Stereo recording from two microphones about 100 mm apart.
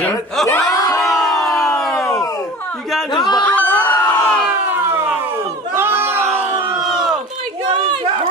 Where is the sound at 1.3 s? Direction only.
35° left (ahead or behind).